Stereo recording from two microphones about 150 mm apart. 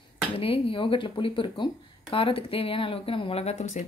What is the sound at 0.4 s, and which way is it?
Speech, 40° left (ahead or behind).